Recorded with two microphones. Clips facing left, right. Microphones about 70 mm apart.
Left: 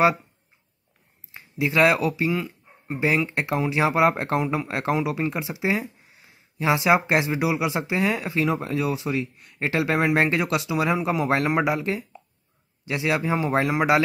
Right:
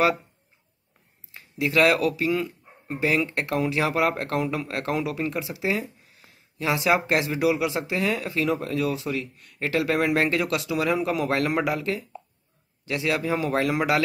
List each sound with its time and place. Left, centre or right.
1.3 s speech: centre
10.4 s speech: centre